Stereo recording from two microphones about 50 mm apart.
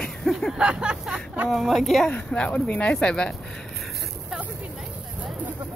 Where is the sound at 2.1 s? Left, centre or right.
Left.